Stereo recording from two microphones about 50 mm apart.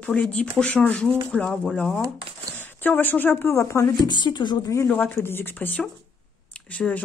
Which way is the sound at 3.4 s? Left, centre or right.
Left.